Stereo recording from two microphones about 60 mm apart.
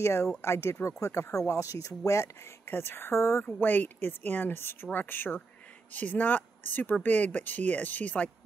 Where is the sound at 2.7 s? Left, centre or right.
Left.